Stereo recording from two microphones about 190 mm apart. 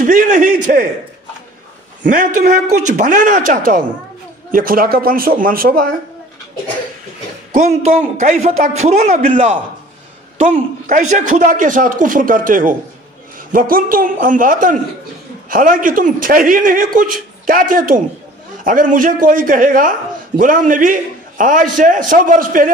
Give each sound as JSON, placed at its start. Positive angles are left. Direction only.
{"t": 0.0, "sound": "speech", "side_deg": -45}
{"t": 2.0, "sound": "speech", "side_deg": -45}
{"t": 8.2, "sound": "a man's voice", "side_deg": -40}
{"t": 10.3, "sound": "a man's voice", "side_deg": -30}